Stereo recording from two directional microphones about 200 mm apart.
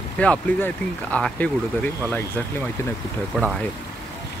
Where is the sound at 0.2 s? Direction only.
5° left (ahead or behind).